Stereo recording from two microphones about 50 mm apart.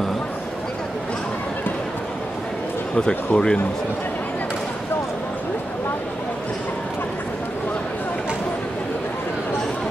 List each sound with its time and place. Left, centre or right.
3.3 s speech: centre